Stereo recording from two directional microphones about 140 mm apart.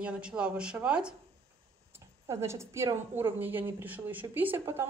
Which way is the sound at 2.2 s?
20° right (ahead or behind).